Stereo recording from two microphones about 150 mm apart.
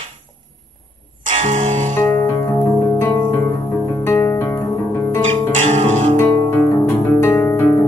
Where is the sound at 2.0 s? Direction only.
20° left (ahead or behind).